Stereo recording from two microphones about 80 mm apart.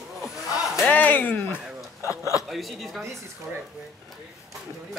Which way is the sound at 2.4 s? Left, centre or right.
Centre.